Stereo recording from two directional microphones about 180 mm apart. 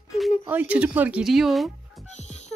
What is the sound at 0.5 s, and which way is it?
Speech, 10° right (ahead or behind).